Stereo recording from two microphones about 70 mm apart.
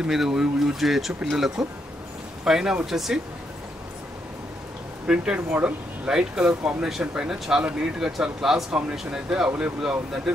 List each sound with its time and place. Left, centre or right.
0.0 s speech: centre
5.0 s speech: centre